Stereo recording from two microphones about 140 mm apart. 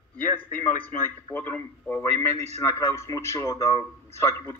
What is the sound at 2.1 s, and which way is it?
Speech, 50° right (ahead or behind).